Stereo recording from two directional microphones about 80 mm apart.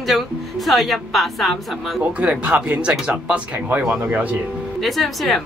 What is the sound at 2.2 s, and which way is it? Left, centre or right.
Speech, centre.